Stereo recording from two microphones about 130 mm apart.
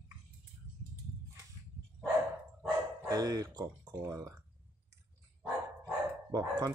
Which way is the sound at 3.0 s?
30° right (ahead or behind).